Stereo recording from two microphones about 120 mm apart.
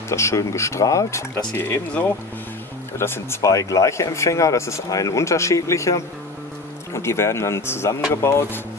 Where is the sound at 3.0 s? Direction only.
20° left (ahead or behind).